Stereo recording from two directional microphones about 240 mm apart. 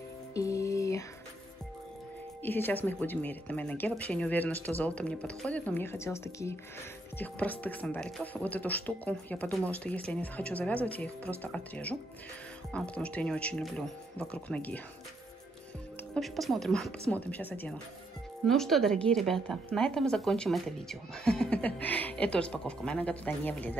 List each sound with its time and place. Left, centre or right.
0.3 s music: centre
2.4 s a woman's voice: centre
16.2 s a woman's voice: centre